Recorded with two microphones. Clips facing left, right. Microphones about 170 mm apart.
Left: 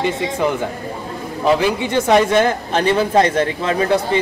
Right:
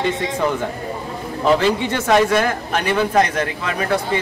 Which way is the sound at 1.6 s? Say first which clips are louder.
Left 1 dB; 15° left (ahead or behind).